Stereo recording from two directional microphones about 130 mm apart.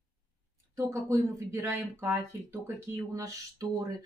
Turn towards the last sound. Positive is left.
turn(degrees=-25)  # may be behind; listen again after turning